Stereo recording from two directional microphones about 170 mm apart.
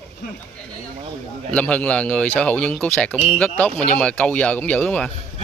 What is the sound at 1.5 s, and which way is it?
Speech, 5° left (ahead or behind).